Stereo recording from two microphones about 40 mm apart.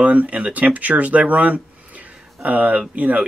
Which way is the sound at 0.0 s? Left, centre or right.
Right.